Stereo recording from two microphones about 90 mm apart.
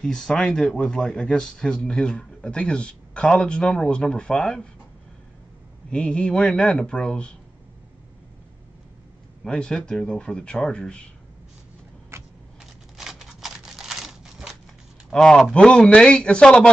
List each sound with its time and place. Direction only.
0.0 s speech: 10° left (ahead or behind)
5.9 s speech: 10° left (ahead or behind)
9.4 s speech: 10° left (ahead or behind)
12.1 s vehicle: 30° right (ahead or behind)
12.9 s a sound: 5° right (ahead or behind)
15.0 s speech: 5° left (ahead or behind)